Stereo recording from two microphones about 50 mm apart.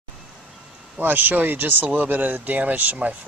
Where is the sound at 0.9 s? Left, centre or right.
Right.